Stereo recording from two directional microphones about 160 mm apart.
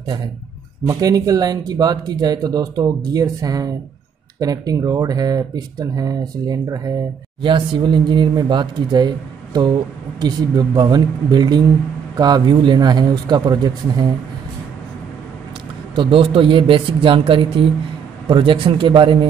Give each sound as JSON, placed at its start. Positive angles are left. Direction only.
{"t": 0.8, "sound": "speech", "side_deg": -25}
{"t": 15.9, "sound": "speech", "side_deg": -35}